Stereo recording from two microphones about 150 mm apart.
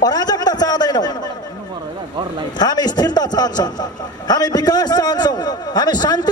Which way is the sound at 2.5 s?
30° left (ahead or behind).